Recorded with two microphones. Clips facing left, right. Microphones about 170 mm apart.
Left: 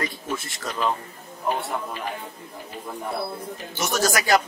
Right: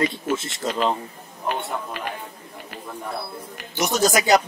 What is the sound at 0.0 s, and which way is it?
Speech, 25° right (ahead or behind).